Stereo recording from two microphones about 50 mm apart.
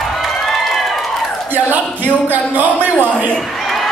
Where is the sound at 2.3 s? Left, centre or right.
Right.